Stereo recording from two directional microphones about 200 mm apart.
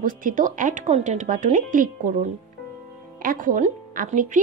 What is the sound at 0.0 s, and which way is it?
A woman's voice, 40° right (ahead or behind).